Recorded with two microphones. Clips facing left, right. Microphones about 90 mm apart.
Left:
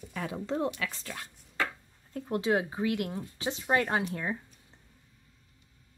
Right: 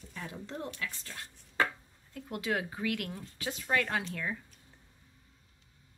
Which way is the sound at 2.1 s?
30° left (ahead or behind).